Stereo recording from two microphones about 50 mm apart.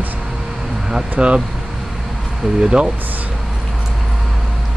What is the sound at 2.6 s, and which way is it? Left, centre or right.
Speech, centre.